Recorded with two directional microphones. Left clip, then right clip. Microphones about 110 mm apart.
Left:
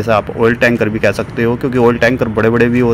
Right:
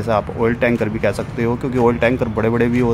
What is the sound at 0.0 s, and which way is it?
Speech, 25° left (ahead or behind).